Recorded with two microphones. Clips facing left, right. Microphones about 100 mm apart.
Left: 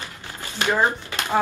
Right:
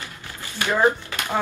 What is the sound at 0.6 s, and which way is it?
Speech, 20° left (ahead or behind).